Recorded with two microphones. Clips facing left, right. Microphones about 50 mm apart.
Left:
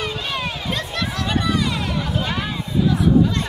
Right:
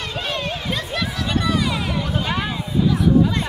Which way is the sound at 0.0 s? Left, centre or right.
Centre.